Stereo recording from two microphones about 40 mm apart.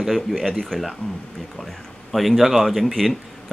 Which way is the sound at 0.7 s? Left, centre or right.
Centre.